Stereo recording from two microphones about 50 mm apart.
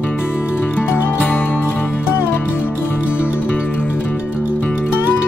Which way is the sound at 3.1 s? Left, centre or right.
Left.